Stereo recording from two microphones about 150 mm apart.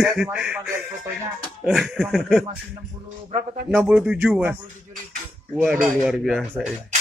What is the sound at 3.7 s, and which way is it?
Speech, 5° right (ahead or behind).